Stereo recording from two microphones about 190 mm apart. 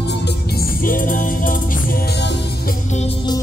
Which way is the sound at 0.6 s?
45° left (ahead or behind).